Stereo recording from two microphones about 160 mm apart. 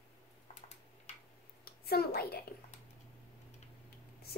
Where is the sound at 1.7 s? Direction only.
75° left (ahead or behind).